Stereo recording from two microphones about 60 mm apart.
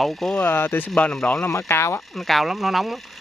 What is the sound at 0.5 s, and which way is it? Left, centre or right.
Speech, left.